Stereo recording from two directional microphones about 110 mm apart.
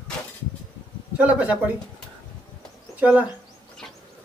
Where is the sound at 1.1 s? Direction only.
15° right (ahead or behind).